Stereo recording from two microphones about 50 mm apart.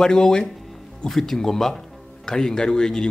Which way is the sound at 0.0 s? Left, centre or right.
Centre.